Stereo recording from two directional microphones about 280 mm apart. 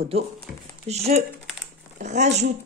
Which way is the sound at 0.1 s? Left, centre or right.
Right.